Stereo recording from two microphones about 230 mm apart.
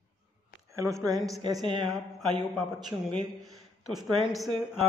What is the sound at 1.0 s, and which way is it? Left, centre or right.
Speech, centre.